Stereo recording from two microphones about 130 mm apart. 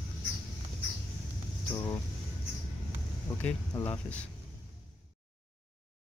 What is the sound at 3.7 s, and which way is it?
Speech, 20° left (ahead or behind).